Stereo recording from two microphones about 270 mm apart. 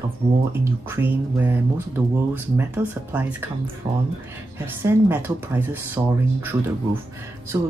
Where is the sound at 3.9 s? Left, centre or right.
Right.